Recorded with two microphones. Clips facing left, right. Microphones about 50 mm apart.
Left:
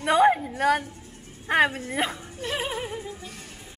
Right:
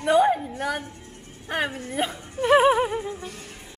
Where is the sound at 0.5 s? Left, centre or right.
Left.